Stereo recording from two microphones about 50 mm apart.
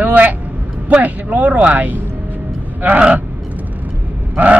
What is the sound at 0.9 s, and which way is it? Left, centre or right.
Speech, right.